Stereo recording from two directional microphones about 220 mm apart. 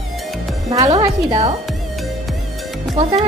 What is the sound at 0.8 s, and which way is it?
Speech, 25° right (ahead or behind).